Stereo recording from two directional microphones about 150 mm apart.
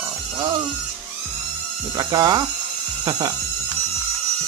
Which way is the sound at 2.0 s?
25° right (ahead or behind).